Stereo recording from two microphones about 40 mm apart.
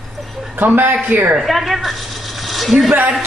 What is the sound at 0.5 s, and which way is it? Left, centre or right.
Speech, right.